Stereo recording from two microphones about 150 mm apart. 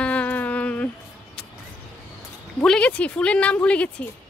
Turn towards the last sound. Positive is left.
turn(degrees=10)  # may be behind; listen again after turning